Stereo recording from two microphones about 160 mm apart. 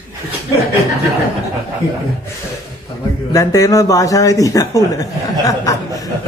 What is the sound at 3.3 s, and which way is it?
A man's voice, 20° left (ahead or behind).